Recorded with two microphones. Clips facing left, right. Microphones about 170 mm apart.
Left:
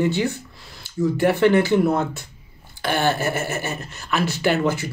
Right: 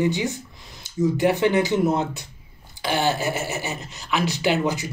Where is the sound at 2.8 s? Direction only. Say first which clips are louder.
Left 1 dB; 55° left (ahead or behind).